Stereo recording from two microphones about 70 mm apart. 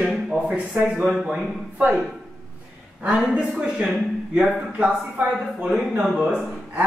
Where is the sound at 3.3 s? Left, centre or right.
Centre.